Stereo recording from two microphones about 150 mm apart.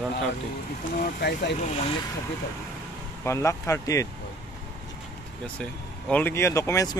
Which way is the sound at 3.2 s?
20° left (ahead or behind).